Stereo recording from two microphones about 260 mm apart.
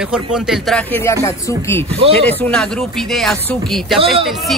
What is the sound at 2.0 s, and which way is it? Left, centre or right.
Speech, right.